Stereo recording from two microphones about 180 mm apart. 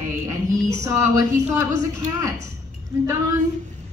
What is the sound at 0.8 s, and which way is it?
Speech, 15° right (ahead or behind).